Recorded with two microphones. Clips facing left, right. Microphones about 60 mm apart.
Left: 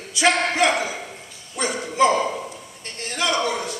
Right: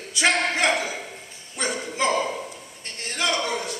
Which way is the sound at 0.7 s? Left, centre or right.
Left.